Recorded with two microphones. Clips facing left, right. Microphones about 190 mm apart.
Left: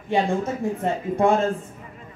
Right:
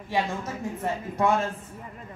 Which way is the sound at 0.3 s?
30° left (ahead or behind).